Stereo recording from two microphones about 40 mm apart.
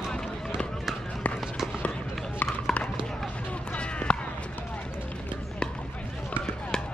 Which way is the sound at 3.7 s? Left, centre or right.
Left.